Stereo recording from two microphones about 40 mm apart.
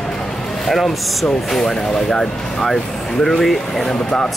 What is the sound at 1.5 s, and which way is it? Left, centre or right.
Speech, centre.